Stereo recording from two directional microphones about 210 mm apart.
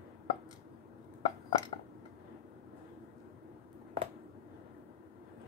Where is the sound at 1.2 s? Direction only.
20° left (ahead or behind).